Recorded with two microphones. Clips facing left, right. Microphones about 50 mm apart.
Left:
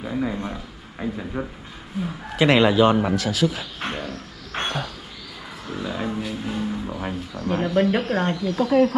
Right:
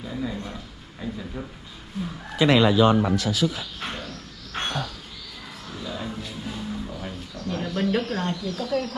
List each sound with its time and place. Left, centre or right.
0.0 s a sound: left
1.4 s speech: left
2.0 s a man's voice: centre
2.3 s speech: left
3.8 s a sound: left
6.4 s vehicle: left
7.3 s speech: left